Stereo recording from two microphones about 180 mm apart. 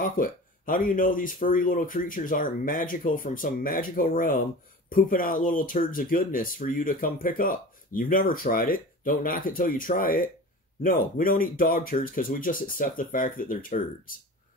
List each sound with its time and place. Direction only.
0.0 s speech: 50° left (ahead or behind)